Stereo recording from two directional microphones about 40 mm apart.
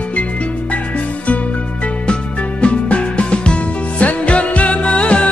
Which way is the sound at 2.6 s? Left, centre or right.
Left.